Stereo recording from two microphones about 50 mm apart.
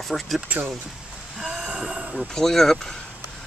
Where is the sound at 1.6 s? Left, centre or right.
Centre.